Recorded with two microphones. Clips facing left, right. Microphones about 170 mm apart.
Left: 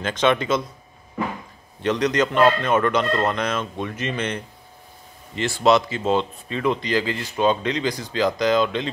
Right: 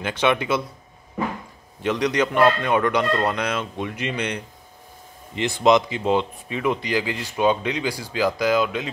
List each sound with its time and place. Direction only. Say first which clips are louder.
0.0 s speech: left 1 dB; 10° right (ahead or behind)
1.8 s speech: left 1 dB; 10° right (ahead or behind)